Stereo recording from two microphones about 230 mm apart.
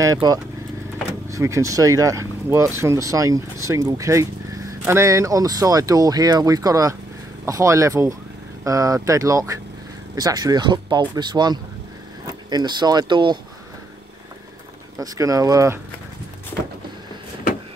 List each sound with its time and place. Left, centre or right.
0.0 s speech: centre
15.0 s speech: centre